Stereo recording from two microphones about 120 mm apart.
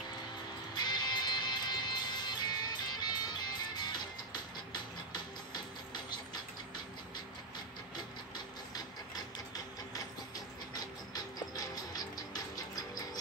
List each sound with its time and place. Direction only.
0.7 s music: 35° left (ahead or behind)
8.7 s printer: 35° left (ahead or behind)